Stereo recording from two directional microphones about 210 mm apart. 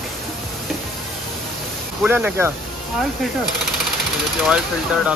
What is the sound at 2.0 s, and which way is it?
Speech, 10° right (ahead or behind).